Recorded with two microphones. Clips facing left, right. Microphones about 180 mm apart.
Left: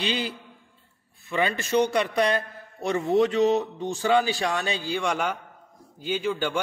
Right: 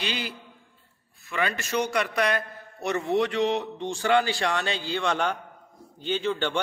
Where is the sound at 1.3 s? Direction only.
30° left (ahead or behind).